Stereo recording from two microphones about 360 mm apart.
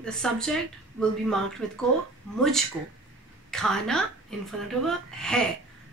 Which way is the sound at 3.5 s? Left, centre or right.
Centre.